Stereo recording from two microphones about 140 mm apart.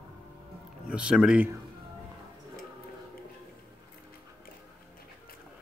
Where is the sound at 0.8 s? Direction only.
5° right (ahead or behind).